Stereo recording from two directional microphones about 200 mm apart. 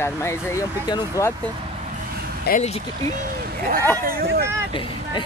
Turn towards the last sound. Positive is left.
turn(degrees=-45)  # may be behind; listen again after turning